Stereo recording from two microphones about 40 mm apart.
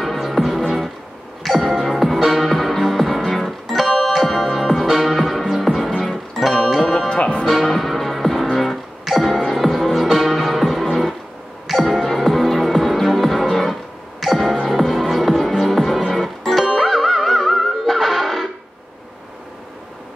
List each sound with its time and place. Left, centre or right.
0.0 s music: centre
7.1 s music: left
7.4 s music: centre